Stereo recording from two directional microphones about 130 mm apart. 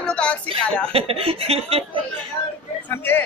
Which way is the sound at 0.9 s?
50° right (ahead or behind).